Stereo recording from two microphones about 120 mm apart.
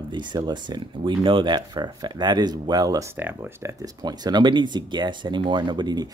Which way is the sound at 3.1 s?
20° right (ahead or behind).